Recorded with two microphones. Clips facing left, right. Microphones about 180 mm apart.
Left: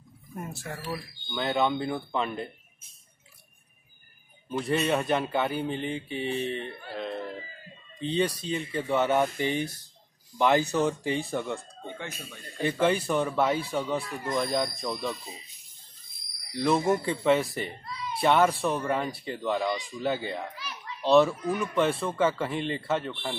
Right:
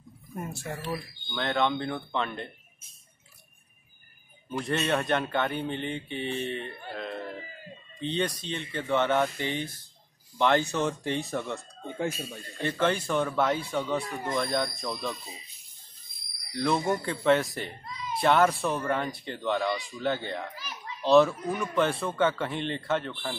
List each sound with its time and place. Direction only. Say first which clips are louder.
0.5 s speech: right 1 dB; centre (ahead or behind)
4.5 s speech: left 2 dB; centre (ahead or behind)
12.0 s a man's voice: right 8 dB; 35° right (ahead or behind)
12.6 s speech: left 2 dB; 5° left (ahead or behind)
16.5 s speech: left 2 dB; 5° left (ahead or behind)